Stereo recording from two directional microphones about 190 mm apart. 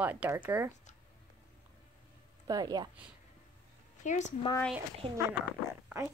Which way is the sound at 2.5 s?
20° right (ahead or behind).